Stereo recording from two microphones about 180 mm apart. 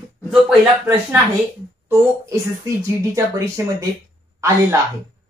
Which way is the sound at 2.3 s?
15° right (ahead or behind).